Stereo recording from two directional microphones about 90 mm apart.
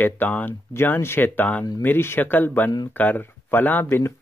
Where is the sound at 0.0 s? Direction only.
20° left (ahead or behind).